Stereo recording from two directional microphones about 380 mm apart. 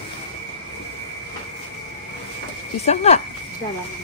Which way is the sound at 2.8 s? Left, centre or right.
Centre.